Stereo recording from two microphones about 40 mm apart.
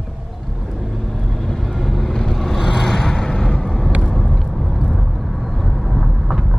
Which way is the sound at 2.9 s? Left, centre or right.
Centre.